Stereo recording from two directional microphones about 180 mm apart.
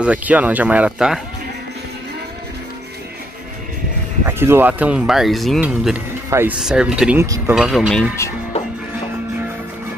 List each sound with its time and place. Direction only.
0.0 s speech: 5° right (ahead or behind)
4.3 s speech: 10° right (ahead or behind)
7.2 s speech: 20° right (ahead or behind)
7.5 s speech: 5° right (ahead or behind)